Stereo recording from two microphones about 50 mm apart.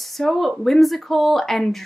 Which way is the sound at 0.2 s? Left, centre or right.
Centre.